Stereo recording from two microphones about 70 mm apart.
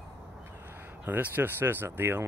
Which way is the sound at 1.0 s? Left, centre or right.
Right.